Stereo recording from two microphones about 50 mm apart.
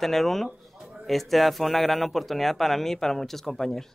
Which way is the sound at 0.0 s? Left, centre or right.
Centre.